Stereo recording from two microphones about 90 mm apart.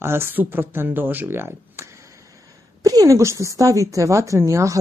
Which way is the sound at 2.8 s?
40° right (ahead or behind).